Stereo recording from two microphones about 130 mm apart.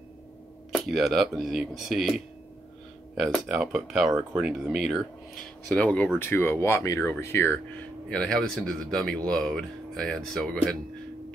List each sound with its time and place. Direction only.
0.7 s speech: centre (ahead or behind)
3.4 s speech: 5° right (ahead or behind)